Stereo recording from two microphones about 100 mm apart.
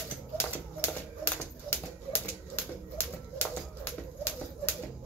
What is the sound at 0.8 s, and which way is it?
Typewriter, 25° left (ahead or behind).